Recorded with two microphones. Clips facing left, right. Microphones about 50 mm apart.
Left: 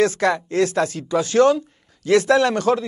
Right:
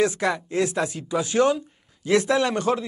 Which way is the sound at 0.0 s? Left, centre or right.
Centre.